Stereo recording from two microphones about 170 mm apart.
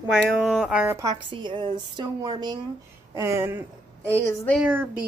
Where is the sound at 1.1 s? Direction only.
30° right (ahead or behind); by 4.8 s 10° right (ahead or behind).